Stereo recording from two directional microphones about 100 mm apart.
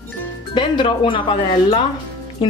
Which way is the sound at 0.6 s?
55° left (ahead or behind).